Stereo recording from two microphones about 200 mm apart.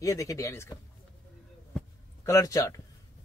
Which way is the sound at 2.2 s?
15° left (ahead or behind).